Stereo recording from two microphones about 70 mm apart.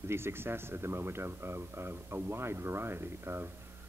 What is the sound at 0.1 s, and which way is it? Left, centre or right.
Speech, right.